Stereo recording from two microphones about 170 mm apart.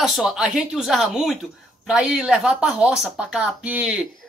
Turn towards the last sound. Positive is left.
turn(degrees=-5)  # may be behind; listen again after turning